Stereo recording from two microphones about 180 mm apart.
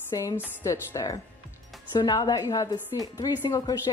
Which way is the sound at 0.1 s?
20° left (ahead or behind).